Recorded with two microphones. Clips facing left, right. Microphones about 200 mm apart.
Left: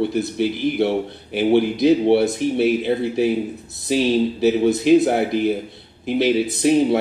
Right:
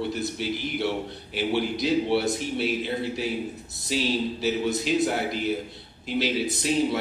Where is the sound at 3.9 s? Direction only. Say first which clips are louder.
Left 8 dB; 55° left (ahead or behind).